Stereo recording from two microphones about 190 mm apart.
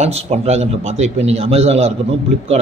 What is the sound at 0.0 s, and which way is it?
A man's voice, 35° right (ahead or behind).